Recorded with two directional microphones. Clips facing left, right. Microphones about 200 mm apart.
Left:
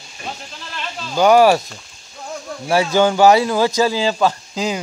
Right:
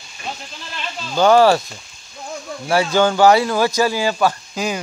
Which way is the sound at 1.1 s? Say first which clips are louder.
Left 1 dB; 15° left (ahead or behind).